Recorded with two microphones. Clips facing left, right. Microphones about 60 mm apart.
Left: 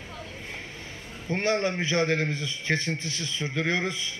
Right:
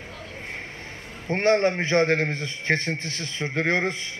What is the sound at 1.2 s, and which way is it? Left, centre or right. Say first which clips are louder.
A man's voice: right 5 dB; right.